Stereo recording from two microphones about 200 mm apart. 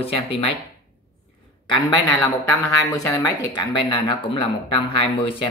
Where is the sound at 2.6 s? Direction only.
15° left (ahead or behind).